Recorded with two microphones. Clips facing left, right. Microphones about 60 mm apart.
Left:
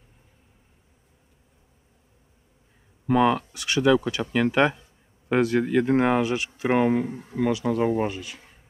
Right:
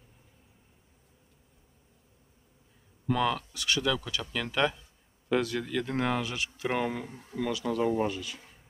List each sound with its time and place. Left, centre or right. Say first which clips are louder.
3.1 s speech: left 8 dB; left